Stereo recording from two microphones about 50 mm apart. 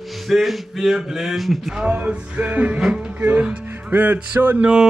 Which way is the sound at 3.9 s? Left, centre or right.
Right.